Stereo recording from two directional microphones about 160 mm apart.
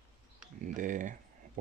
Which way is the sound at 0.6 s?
55° right (ahead or behind).